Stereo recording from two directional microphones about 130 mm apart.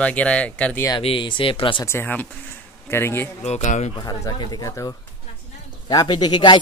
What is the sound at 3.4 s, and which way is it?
Speech, 60° left (ahead or behind).